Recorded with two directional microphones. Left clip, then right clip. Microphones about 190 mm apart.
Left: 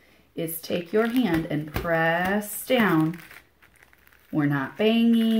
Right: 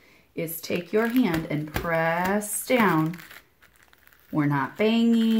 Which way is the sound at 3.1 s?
5° right (ahead or behind).